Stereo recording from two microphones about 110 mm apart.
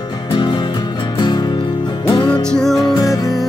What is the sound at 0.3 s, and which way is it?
Music, 50° left (ahead or behind).